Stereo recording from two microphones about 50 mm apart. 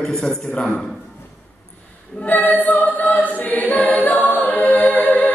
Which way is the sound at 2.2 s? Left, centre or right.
Left.